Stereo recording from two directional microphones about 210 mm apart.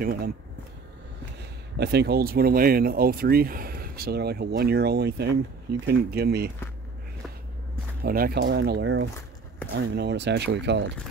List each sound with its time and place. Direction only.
1.8 s speech: 50° right (ahead or behind)
8.0 s speech: 45° right (ahead or behind)